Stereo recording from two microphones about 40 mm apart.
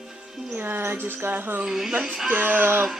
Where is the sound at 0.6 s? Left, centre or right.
Right.